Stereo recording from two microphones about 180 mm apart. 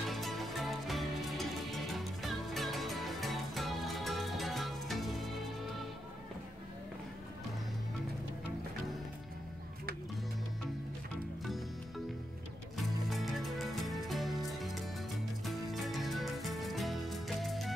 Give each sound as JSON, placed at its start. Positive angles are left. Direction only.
{"t": 0.1, "sound": "music", "side_deg": 0}
{"t": 12.7, "sound": "music", "side_deg": 0}